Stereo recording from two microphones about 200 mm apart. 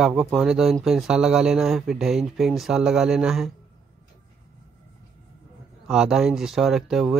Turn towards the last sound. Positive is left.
turn(degrees=0)  # may be behind; listen again after turning